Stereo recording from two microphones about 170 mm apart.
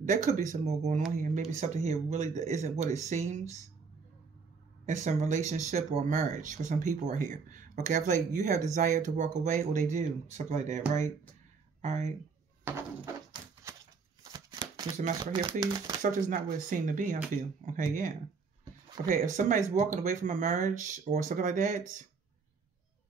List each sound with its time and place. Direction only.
0.0 s speech: 50° right (ahead or behind)
4.8 s speech: 45° right (ahead or behind)
12.6 s a sound: 15° right (ahead or behind)
14.2 s shuffling cards: 25° right (ahead or behind)
15.0 s speech: 45° right (ahead or behind)
19.0 s speech: 50° right (ahead or behind)